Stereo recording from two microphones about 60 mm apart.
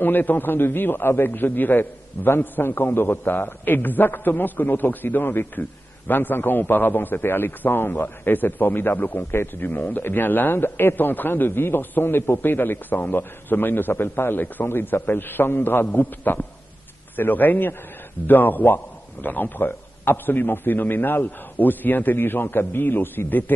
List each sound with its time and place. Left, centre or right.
0.0 s a man's voice: left
9.3 s a man's voice: left
9.7 s a man's voice: left